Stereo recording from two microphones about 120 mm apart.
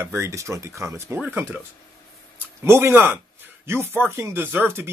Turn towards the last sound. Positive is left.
turn(degrees=-20)  # may be behind; listen again after turning